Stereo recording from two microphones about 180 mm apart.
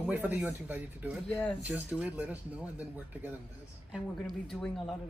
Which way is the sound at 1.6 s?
5° right (ahead or behind).